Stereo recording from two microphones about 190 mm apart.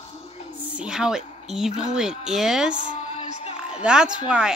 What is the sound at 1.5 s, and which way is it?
Speech, 5° right (ahead or behind).